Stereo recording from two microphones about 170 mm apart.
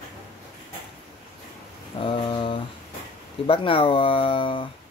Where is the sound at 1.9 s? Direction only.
30° left (ahead or behind).